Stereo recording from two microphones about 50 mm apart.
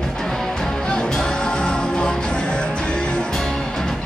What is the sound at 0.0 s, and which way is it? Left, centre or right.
Music, centre.